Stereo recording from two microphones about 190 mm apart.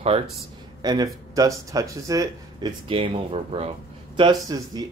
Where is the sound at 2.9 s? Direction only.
30° right (ahead or behind).